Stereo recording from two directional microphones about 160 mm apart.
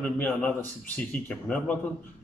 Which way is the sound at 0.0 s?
10° left (ahead or behind).